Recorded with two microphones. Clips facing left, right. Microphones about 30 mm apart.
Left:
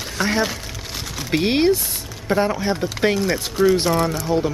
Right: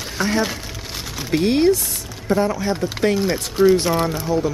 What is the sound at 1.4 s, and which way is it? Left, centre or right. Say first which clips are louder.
Speech: right 1 dB; left.